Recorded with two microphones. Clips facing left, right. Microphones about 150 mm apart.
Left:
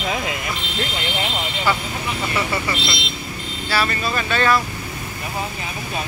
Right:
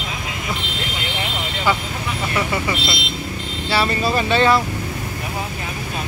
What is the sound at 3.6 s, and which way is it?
Speech, 25° right (ahead or behind).